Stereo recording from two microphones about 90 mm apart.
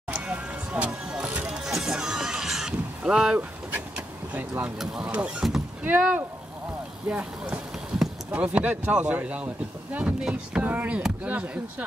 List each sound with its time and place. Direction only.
0.1 s music: 15° right (ahead or behind)
4.3 s speech: 20° right (ahead or behind)
5.9 s speech: 20° right (ahead or behind)